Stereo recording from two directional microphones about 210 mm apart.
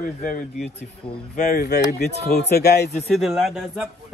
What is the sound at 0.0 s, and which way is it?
Speech, 40° left (ahead or behind).